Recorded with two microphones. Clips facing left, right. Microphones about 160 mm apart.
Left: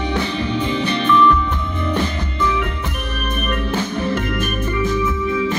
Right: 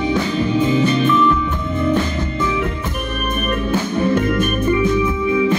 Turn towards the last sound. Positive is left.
turn(degrees=-55)  # may be behind; listen again after turning